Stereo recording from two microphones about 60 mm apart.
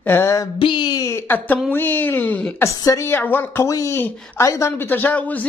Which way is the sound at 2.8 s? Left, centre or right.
Left.